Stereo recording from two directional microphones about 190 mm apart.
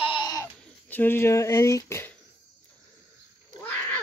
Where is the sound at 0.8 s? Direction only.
10° left (ahead or behind).